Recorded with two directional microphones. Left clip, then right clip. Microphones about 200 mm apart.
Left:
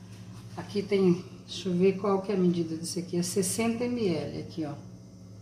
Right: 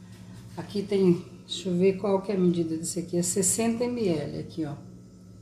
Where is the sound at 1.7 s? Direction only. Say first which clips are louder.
Right 1 dB; centre (ahead or behind).